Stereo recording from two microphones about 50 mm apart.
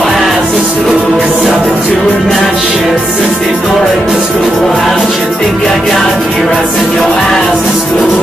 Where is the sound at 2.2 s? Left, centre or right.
Centre.